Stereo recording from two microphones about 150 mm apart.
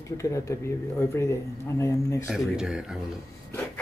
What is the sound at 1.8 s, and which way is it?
Speech, 20° left (ahead or behind).